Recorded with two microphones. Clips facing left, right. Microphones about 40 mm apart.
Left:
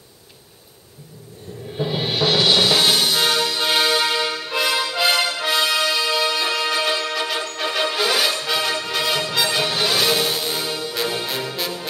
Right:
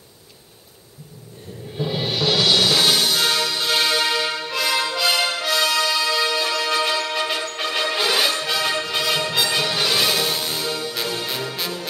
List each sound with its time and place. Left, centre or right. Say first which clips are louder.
1.8 s music: left 2 dB; centre
4.5 s music: left 1 dB; centre
7.9 s music: right 2 dB; centre